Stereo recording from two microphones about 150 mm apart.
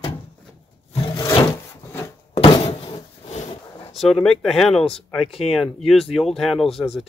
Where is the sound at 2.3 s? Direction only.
40° left (ahead or behind).